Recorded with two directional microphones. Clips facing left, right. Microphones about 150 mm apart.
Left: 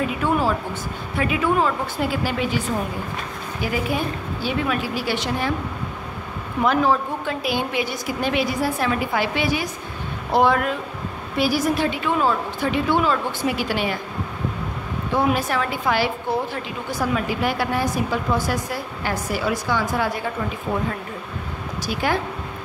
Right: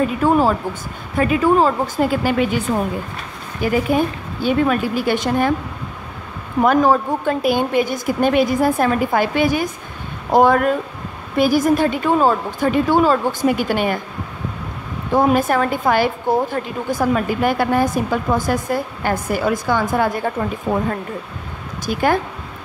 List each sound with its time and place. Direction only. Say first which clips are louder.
0.2 s a woman's voice: right 6 dB; 45° right (ahead or behind)
3.6 s a woman's voice: right 7 dB; 50° right (ahead or behind)
6.6 s a woman's voice: right 5 dB; 45° right (ahead or behind)
15.1 s a woman's voice: right 6 dB; 50° right (ahead or behind)
21.8 s a woman's voice: right 6 dB; 50° right (ahead or behind)